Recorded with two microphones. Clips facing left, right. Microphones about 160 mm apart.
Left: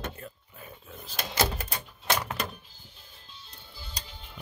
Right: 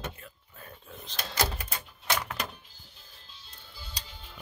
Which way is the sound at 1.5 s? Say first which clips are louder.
Left 3 dB; 35° left (ahead or behind).